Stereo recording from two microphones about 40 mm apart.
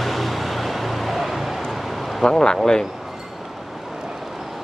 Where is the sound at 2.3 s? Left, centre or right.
Centre.